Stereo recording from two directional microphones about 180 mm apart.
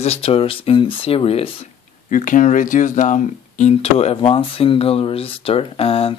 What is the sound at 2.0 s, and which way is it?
Speech, 45° left (ahead or behind).